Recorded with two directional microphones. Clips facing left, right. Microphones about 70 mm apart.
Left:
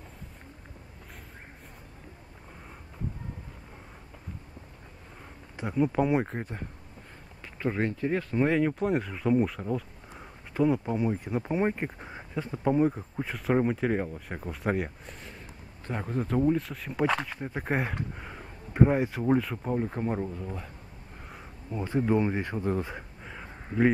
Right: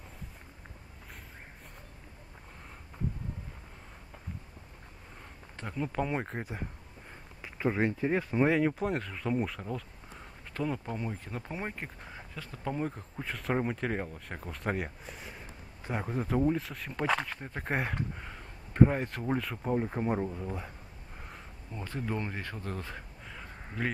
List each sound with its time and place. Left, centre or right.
5.6 s speech: centre
8.5 s speech: centre
21.7 s speech: centre